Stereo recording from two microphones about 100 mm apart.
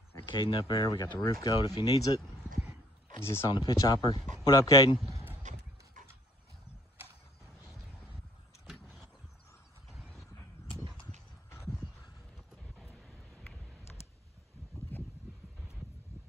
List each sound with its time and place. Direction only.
0.3 s speech: 55° left (ahead or behind); by 2.2 s 35° left (ahead or behind)
3.2 s speech: 25° left (ahead or behind)
3.4 s speech: 45° left (ahead or behind)
9.8 s horse: centre (ahead or behind)
11.5 s a sound: 25° left (ahead or behind)
12.4 s vehicle: centre (ahead or behind)
14.9 s a sound: 20° left (ahead or behind)